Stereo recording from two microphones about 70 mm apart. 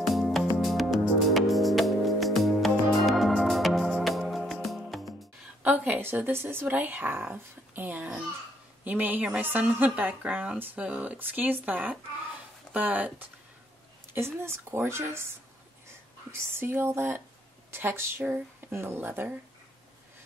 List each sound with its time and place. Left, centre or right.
0.0 s music: centre
5.6 s a woman's voice: right
14.1 s speech: right
16.3 s speech: right